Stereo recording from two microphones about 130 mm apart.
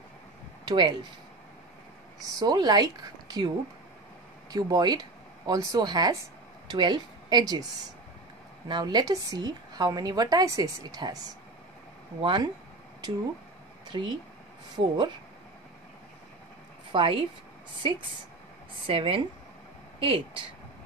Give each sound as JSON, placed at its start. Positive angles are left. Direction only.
{"t": 0.7, "sound": "speech", "side_deg": -35}
{"t": 2.2, "sound": "a woman's voice", "side_deg": -30}
{"t": 8.6, "sound": "a woman's voice", "side_deg": -35}
{"t": 12.2, "sound": "a woman's voice", "side_deg": -40}
{"t": 13.8, "sound": "a woman's voice", "side_deg": -35}
{"t": 16.9, "sound": "speech", "side_deg": -45}